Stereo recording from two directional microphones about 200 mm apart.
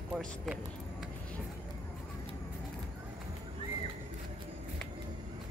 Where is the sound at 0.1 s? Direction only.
Centre (ahead or behind).